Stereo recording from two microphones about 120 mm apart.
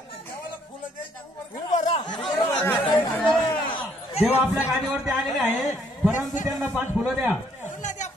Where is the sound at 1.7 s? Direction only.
80° left.